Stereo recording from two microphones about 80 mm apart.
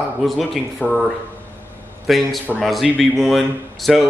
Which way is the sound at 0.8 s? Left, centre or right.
Centre.